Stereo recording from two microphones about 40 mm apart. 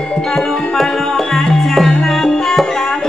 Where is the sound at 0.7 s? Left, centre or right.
Centre.